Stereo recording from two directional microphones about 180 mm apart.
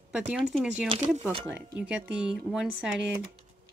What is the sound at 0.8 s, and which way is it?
Speech, 35° right (ahead or behind).